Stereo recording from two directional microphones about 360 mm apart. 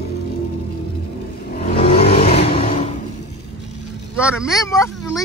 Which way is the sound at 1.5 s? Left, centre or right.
Left.